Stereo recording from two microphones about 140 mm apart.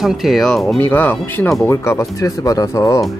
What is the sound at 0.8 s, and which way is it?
Speech, 15° left (ahead or behind).